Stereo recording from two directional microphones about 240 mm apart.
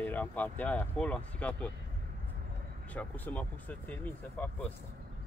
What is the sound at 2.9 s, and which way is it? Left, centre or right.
Speech, centre.